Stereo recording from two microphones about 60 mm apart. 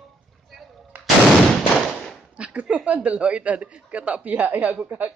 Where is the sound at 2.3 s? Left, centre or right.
Centre.